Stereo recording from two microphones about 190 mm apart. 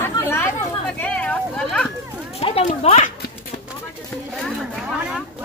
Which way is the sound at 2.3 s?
30° left (ahead or behind).